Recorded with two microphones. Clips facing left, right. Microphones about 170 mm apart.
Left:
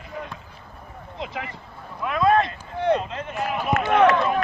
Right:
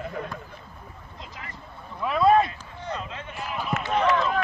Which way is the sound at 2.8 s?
65° left (ahead or behind).